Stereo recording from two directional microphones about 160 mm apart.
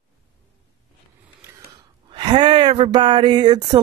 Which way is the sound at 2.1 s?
30° right (ahead or behind).